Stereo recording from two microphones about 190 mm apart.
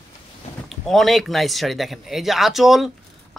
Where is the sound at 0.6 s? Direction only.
Centre (ahead or behind).